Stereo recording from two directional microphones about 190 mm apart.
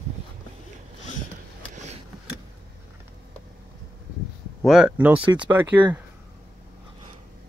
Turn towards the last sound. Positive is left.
turn(degrees=-10)  # may be behind; listen again after turning